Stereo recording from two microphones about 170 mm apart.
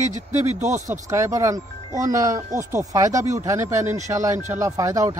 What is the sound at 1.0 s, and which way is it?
Speech, 15° right (ahead or behind).